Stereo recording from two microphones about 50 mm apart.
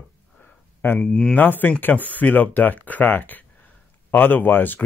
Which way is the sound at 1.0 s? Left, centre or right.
Centre.